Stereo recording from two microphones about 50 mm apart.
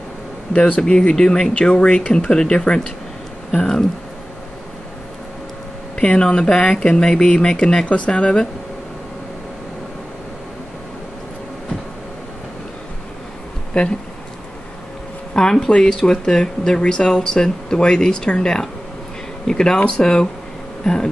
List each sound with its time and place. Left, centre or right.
0.5 s speech: left
5.9 s speech: centre
13.7 s speech: centre
15.3 s speech: centre